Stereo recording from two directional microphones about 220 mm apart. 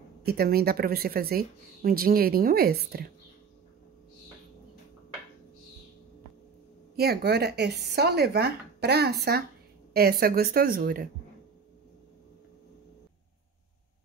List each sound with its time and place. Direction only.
0.2 s speech: 45° right (ahead or behind)
7.0 s a woman's voice: 45° right (ahead or behind)